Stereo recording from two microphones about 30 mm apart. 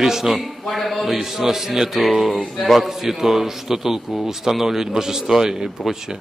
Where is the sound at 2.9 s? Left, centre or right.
Centre.